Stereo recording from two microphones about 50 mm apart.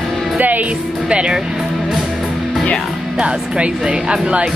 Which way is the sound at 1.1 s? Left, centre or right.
Right.